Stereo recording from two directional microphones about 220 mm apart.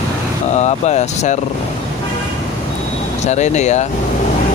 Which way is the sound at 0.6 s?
30° left (ahead or behind).